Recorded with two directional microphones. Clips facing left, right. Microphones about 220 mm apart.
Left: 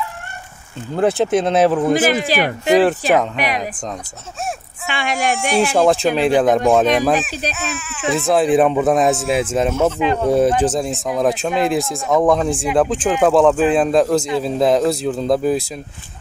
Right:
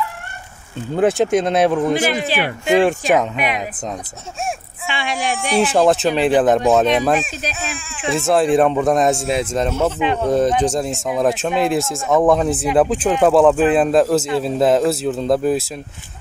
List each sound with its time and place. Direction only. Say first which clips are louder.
0.9 s speech: right 1 dB; centre (ahead or behind)
2.0 s speech: left 3 dB; 40° left (ahead or behind)
2.8 s speech: left 1 dB; centre (ahead or behind)
4.8 s speech: left 2 dB; 45° left (ahead or behind)
5.6 s speech: right 1 dB; centre (ahead or behind)